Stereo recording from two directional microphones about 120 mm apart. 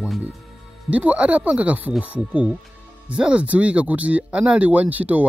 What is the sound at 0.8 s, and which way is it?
Speech, 10° right (ahead or behind).